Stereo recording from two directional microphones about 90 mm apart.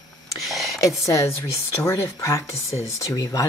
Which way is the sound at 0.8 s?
35° left (ahead or behind).